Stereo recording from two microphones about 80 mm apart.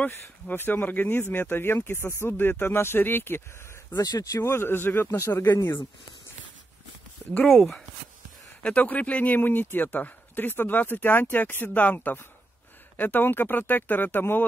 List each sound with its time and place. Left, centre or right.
0.0 s speech: left
3.9 s speech: left
4.5 s speech: left
8.6 s speech: centre